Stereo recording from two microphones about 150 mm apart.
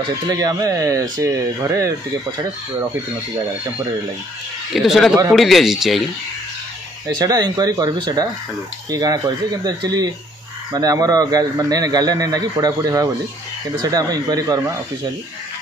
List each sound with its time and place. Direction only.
0.3 s speech: 25° right (ahead or behind)
4.7 s speech: centre (ahead or behind)
7.2 s speech: 25° right (ahead or behind)